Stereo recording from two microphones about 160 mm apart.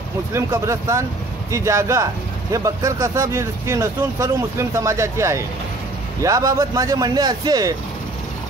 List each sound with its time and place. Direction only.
0.3 s speech: 20° right (ahead or behind)